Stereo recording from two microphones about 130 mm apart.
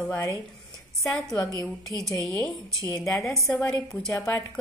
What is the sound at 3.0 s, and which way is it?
A woman's voice, centre (ahead or behind).